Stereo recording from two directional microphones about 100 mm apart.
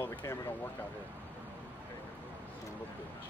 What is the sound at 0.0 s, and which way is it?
Speech, 25° left (ahead or behind).